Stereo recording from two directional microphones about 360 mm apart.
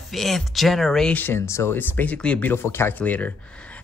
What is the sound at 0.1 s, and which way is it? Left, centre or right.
Speech, centre.